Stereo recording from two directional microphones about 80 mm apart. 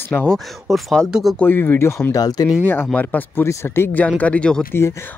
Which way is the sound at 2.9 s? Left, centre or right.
Left.